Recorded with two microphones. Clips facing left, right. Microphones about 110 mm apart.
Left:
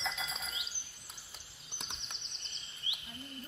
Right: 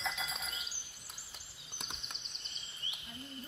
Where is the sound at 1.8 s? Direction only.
5° right (ahead or behind).